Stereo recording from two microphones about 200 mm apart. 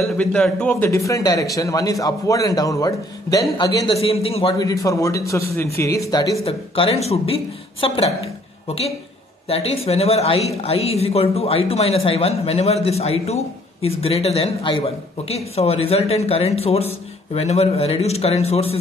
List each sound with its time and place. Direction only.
0.2 s a man's voice: 5° left (ahead or behind); by 4.6 s 30° left (ahead or behind)
4.8 s a man's voice: 15° left (ahead or behind)
6.4 s a woman's voice: 30° left (ahead or behind)